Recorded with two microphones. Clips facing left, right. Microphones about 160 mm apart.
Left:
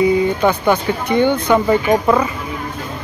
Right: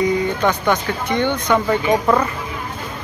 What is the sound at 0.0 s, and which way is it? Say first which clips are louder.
Speech: left 4 dB; 10° left (ahead or behind).